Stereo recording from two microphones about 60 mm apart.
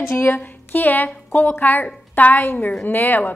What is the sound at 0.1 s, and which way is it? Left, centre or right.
Speech, left.